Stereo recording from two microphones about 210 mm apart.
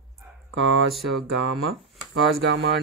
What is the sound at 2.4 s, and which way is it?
Speech, 60° right (ahead or behind).